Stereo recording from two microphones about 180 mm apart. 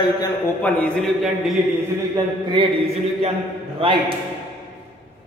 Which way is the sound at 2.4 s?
25° right (ahead or behind).